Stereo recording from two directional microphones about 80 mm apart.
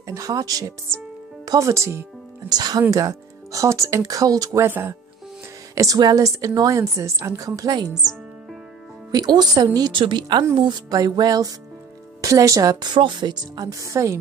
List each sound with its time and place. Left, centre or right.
0.0 s a woman's voice: right
2.5 s speech: right
2.9 s a woman's voice: right
4.6 s speech: right
5.8 s a woman's voice: right
9.1 s speech: right
9.8 s a woman's voice: right
10.9 s a woman's voice: right
12.8 s a woman's voice: right